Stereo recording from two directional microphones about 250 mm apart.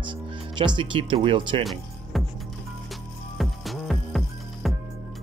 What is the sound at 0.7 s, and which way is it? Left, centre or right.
Speech, right.